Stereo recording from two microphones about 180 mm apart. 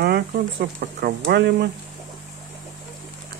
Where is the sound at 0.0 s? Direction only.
60° right (ahead or behind).